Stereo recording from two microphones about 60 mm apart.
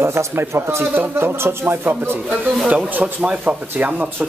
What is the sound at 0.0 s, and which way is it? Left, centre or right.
Speech, right.